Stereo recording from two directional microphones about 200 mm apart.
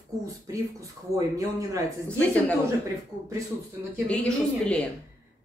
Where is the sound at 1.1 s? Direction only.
15° right (ahead or behind).